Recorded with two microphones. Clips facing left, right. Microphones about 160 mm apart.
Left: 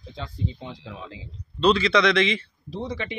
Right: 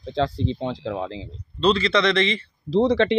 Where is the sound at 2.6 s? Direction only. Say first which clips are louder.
Right 13 dB; 80° right.